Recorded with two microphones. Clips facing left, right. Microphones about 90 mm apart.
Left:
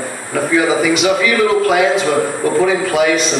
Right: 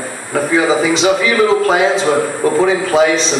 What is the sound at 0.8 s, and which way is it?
A man's voice, 30° right (ahead or behind).